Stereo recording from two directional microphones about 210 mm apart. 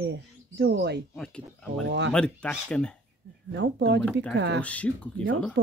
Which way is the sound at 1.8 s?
60° right (ahead or behind).